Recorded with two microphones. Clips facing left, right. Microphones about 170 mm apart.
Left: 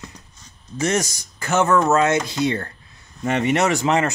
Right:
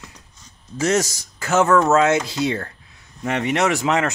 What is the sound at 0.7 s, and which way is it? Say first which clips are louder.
Speech: right 2 dB; 5° right (ahead or behind).